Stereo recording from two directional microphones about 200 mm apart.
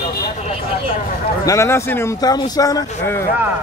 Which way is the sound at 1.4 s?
15° left (ahead or behind).